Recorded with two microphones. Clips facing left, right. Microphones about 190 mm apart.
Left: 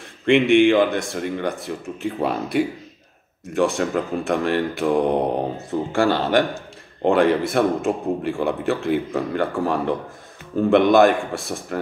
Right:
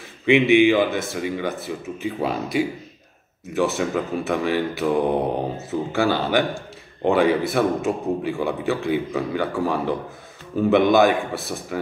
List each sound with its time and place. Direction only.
0.2 s speech: 5° right (ahead or behind)